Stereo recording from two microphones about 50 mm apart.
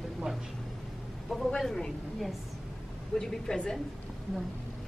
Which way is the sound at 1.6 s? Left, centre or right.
Centre.